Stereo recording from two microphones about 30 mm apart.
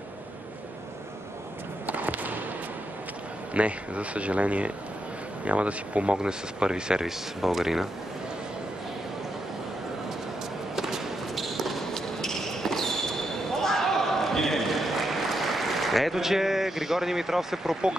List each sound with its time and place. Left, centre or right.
1.9 s a sound: right
3.5 s speech: right
6.1 s speech: right
7.1 s speech: centre
10.8 s a sound: centre
11.3 s basketball bounce: centre
11.9 s basketball bounce: centre
14.7 s a sound: centre
16.2 s speech: centre